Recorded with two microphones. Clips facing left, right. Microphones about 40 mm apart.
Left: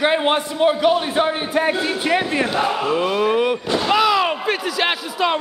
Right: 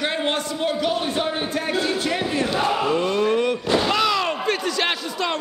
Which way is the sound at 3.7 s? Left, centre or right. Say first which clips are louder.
Left 4 dB; centre.